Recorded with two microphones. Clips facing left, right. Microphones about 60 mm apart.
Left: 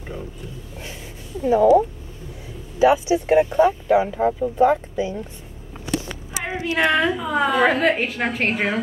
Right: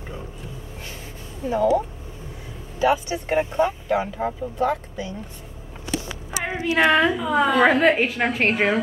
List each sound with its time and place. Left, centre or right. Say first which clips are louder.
1.6 s speech: left 5 dB; centre
4.2 s a woman's voice: left 6 dB; centre
4.6 s speech: left 6 dB; centre
6.4 s a woman's voice: right 1 dB; centre